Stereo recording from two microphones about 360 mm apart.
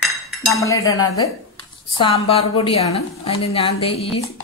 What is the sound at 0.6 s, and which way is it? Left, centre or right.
Speech, centre.